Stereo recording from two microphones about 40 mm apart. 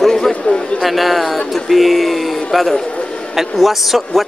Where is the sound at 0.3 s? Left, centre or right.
Left.